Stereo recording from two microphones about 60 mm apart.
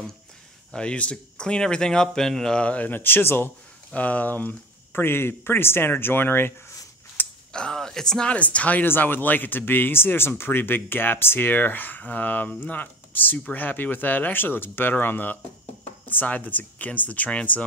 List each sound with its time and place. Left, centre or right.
0.7 s speech: centre
2.6 s speech: left
3.0 s speech: left
3.9 s speech: left
7.2 s a sound: left
7.5 s speech: centre
8.3 s speech: left
8.8 s speech: left